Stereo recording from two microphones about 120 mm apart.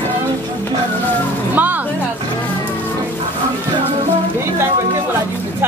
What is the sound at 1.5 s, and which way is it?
Music, 15° right (ahead or behind).